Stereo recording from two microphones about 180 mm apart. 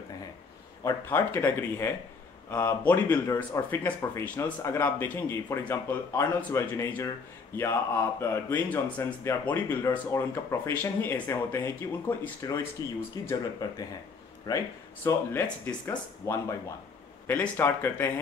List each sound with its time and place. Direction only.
0.8 s a man's voice: 15° left (ahead or behind)